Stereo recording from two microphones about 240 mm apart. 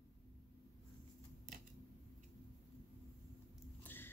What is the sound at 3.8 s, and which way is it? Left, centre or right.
Biting, centre.